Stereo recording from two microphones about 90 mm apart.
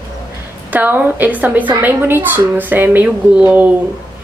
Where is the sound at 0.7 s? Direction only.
20° right (ahead or behind).